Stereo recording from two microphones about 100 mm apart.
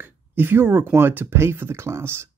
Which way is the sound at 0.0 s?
20° right (ahead or behind).